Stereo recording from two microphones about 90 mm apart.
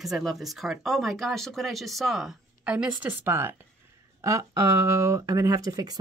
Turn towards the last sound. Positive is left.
turn(degrees=-45)  # may be behind; listen again after turning